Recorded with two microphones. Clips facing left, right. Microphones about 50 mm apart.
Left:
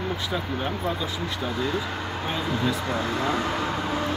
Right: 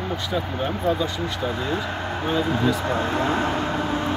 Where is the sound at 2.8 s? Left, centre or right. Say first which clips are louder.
Right 3 dB; right.